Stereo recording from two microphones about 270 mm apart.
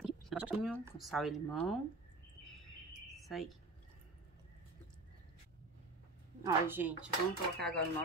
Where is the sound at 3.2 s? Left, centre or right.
Centre.